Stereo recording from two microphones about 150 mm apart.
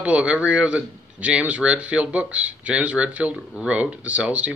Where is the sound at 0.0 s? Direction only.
5° right (ahead or behind).